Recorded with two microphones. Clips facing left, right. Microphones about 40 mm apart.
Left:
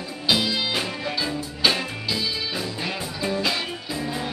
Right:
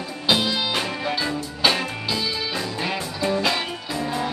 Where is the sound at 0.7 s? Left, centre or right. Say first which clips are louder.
Right 2 dB; centre.